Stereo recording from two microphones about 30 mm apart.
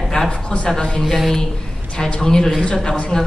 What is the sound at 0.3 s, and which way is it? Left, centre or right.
Speech, left.